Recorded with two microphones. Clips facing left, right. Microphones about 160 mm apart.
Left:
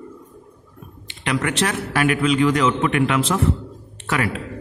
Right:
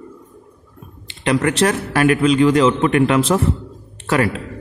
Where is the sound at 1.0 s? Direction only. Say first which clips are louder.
Right 6 dB; 35° right (ahead or behind).